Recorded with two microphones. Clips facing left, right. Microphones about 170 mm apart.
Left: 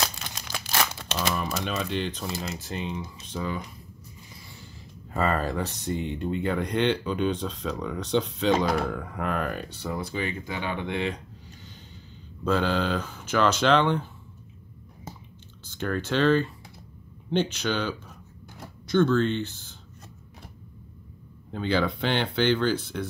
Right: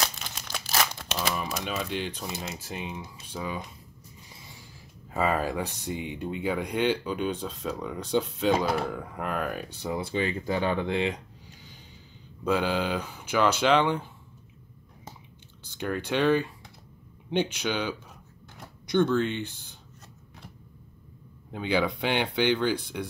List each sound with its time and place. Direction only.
0.0 s crumpling: centre (ahead or behind)
5.1 s speech: 10° right (ahead or behind)
9.9 s speech: 25° right (ahead or behind)
12.4 s speech: 10° right (ahead or behind)
15.6 s speech: 10° right (ahead or behind)
21.5 s speech: 15° right (ahead or behind)